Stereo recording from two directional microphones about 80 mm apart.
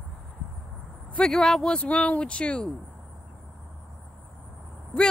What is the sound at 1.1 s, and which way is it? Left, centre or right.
Speech, centre.